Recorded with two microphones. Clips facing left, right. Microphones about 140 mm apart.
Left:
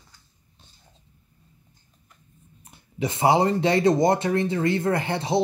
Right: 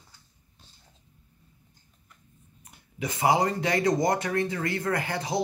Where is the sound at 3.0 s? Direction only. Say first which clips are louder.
Left 4 dB; 25° left (ahead or behind).